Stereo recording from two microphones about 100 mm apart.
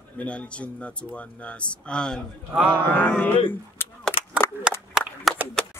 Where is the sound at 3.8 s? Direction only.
25° left (ahead or behind).